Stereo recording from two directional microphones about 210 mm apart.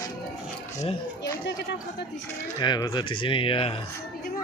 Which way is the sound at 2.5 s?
20° left (ahead or behind).